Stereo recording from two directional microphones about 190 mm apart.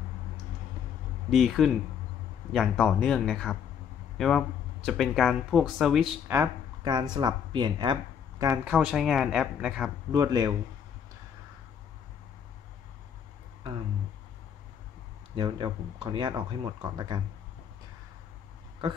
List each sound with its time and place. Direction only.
1.3 s speech: centre (ahead or behind)
6.8 s speech: 20° right (ahead or behind)
8.6 s speech: centre (ahead or behind)
10.1 s speech: 20° right (ahead or behind)
15.3 s speech: 25° right (ahead or behind)